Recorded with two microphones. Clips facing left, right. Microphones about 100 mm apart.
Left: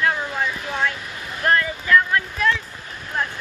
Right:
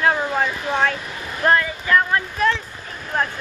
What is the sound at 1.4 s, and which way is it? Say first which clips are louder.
Speech: right 2 dB; 25° right (ahead or behind).